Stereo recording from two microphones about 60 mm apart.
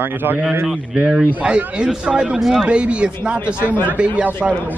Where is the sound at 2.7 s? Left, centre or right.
Centre.